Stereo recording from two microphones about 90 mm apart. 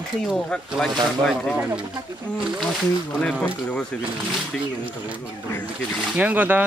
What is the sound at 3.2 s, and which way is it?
Speech, 5° left (ahead or behind).